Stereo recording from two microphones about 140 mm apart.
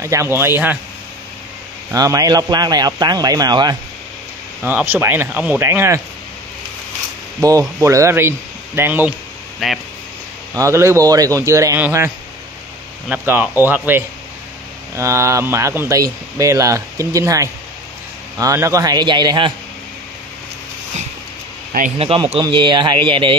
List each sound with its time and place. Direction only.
0.0 s speech: 20° right (ahead or behind)
1.9 s speech: 25° right (ahead or behind)
4.6 s speech: 15° right (ahead or behind)
7.3 s speech: 20° right (ahead or behind)
9.6 s speech: centre (ahead or behind)
10.5 s speech: 20° right (ahead or behind)
13.1 s speech: 10° right (ahead or behind); by 19.5 s 35° right (ahead or behind)
21.9 s speech: 45° right (ahead or behind)